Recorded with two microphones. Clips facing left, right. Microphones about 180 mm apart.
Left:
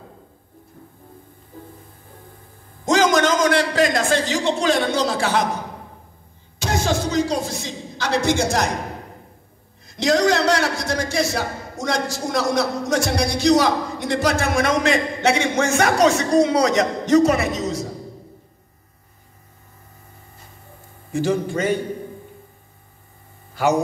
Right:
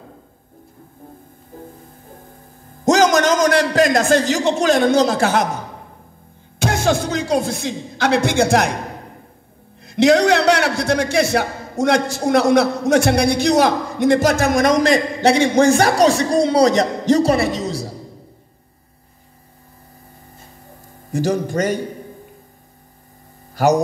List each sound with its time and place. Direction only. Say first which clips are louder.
2.8 s a man's voice: right 3 dB; 40° right (ahead or behind)
6.6 s speech: right 4 dB; 55° right (ahead or behind)
9.8 s a man's voice: right 5 dB; 60° right (ahead or behind); by 17.9 s 30° right (ahead or behind)
21.1 s a man's voice: right 2 dB; 40° right (ahead or behind)
23.5 s speech: right 4 dB; 40° right (ahead or behind)